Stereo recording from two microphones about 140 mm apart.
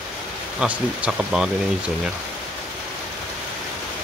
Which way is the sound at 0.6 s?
10° right (ahead or behind).